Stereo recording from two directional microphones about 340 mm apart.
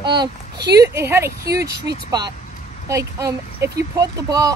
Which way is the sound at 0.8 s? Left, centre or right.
Centre.